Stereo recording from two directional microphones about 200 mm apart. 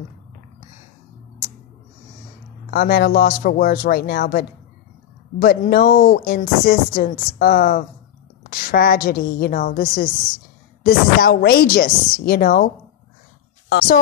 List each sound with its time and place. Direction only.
2.7 s speech: 50° left (ahead or behind)